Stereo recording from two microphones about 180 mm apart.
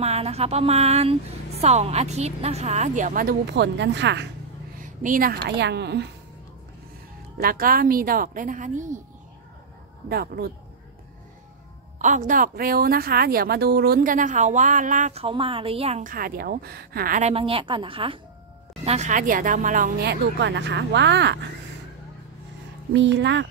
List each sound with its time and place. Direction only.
0.0 s a woman's voice: 35° right (ahead or behind)
3.4 s speech: 75° right (ahead or behind)
5.0 s speech: 50° right (ahead or behind); by 6.0 s 70° right (ahead or behind)
7.3 s a woman's voice: 55° right (ahead or behind)
10.0 s speech: 60° right (ahead or behind)
12.0 s a woman's voice: 45° right (ahead or behind)
16.0 s a woman's voice: 50° right (ahead or behind); by 18.2 s 30° right (ahead or behind)
18.9 s a woman's voice: 40° right (ahead or behind)
20.1 s speech: 75° right (ahead or behind)
22.9 s speech: 80° right